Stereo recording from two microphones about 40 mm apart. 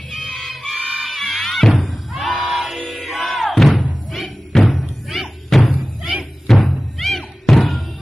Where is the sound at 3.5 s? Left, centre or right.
Centre.